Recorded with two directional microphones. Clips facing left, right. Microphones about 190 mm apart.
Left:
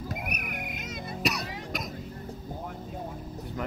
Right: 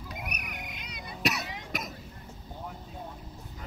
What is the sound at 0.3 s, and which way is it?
Music, 55° left (ahead or behind).